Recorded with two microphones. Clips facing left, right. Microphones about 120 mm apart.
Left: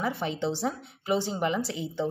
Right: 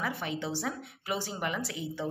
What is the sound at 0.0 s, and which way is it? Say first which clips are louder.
A woman's voice: left 5 dB; 25° left (ahead or behind).